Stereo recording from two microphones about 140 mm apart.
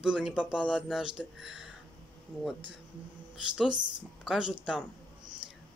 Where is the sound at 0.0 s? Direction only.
5° right (ahead or behind).